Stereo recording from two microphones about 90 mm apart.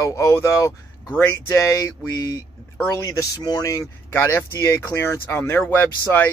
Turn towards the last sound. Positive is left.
turn(degrees=25)  # may be behind; listen again after turning